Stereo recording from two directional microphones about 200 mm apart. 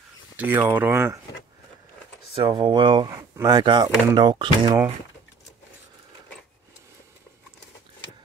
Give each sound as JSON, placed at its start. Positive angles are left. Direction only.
{"t": 0.4, "sound": "speech", "side_deg": -10}
{"t": 2.3, "sound": "speech", "side_deg": -25}